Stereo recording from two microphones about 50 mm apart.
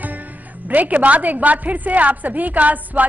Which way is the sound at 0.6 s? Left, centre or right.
Right.